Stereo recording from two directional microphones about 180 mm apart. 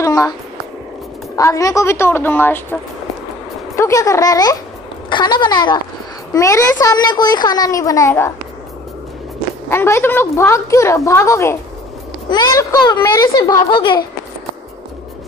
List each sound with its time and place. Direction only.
0.0 s a sound: 20° left (ahead or behind)
1.3 s a woman's voice: 15° left (ahead or behind)
9.7 s a woman's voice: 15° left (ahead or behind)